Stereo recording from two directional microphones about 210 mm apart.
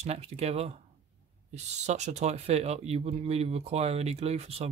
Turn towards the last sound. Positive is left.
turn(degrees=-30)  # may be behind; listen again after turning